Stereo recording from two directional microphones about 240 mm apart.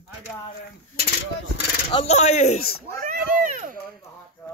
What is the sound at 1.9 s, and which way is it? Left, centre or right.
Speech, left.